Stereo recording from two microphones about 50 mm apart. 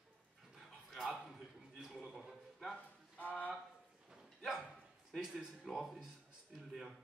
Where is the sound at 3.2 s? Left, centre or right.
Left.